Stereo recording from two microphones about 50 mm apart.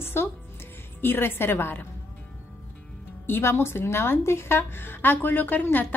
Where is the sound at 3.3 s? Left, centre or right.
Left.